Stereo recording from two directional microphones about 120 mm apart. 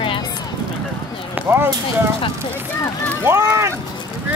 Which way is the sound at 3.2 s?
25° right (ahead or behind).